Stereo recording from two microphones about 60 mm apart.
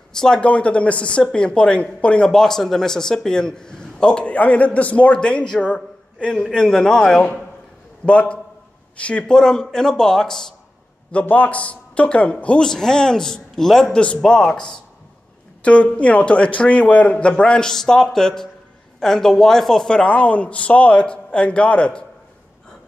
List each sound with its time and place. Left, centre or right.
0.1 s speech: centre
11.1 s speech: left; by 13.8 s centre
13.9 s speech: centre
15.6 s speech: left